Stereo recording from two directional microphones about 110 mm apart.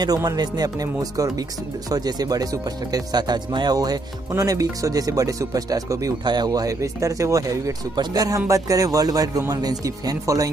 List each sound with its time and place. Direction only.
0.0 s speech: 40° right (ahead or behind)
1.9 s speech: 35° right (ahead or behind)